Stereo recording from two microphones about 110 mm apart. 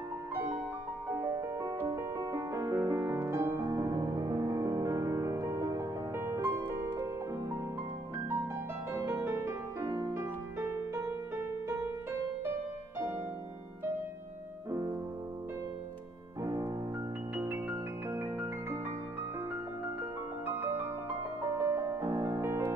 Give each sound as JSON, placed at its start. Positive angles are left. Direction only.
{"t": 1.1, "sound": "music", "side_deg": -25}
{"t": 3.6, "sound": "music", "side_deg": -35}
{"t": 8.9, "sound": "music", "side_deg": -20}
{"t": 14.7, "sound": "music", "side_deg": -30}
{"t": 16.4, "sound": "music", "side_deg": -35}
{"t": 17.4, "sound": "music", "side_deg": -20}
{"t": 20.4, "sound": "music", "side_deg": -20}
{"t": 22.0, "sound": "music", "side_deg": -50}
{"t": 22.4, "sound": "music", "side_deg": -25}